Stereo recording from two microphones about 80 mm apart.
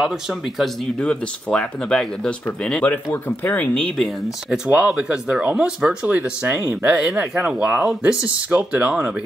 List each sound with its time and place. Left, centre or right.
0.0 s speech: centre
0.9 s speech: centre
2.8 s speech: left; by 4.1 s centre
4.6 s speech: centre